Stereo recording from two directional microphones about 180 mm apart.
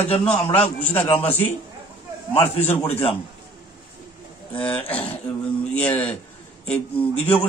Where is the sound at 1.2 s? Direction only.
10° left (ahead or behind).